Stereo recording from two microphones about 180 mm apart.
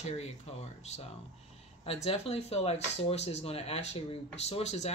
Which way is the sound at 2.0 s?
35° left (ahead or behind).